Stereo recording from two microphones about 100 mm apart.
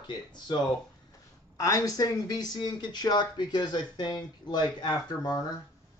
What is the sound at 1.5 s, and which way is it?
Speech, 35° left (ahead or behind).